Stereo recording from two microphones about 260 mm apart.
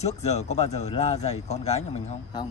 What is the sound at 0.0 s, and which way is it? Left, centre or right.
Speech, left.